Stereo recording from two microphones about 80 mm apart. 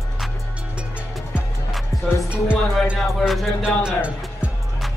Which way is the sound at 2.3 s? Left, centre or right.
Centre.